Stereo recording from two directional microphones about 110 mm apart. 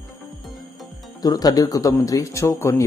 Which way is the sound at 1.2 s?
35° left (ahead or behind).